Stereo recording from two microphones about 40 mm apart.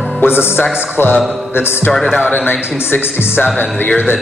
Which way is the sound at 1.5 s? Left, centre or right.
Left.